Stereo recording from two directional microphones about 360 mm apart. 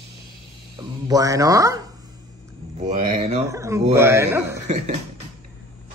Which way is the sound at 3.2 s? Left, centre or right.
Centre.